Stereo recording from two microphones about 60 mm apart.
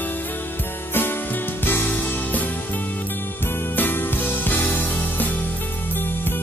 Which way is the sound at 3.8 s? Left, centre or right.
Left.